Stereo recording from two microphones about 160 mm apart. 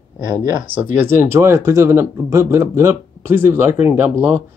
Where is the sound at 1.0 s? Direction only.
15° right (ahead or behind).